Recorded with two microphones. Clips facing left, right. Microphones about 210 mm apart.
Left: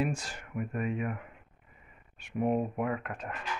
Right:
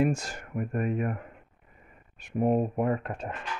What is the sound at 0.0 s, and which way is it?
Speech, 45° right (ahead or behind).